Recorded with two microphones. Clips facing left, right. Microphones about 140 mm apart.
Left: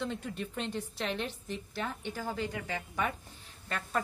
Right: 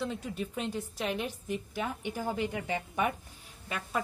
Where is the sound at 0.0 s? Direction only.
5° right (ahead or behind).